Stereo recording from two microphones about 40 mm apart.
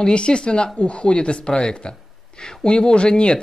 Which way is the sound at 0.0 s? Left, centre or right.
Left.